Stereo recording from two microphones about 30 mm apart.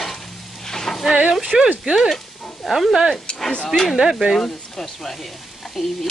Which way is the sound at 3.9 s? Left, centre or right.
Centre.